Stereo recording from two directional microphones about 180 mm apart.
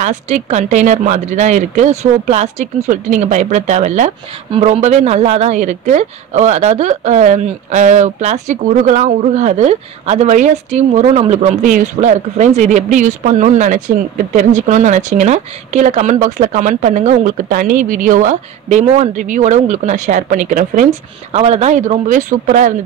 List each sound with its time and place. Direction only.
0.0 s speech: 40° right (ahead or behind)
21.3 s speech: 35° right (ahead or behind)